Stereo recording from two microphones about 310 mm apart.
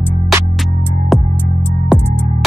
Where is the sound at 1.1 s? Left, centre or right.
Centre.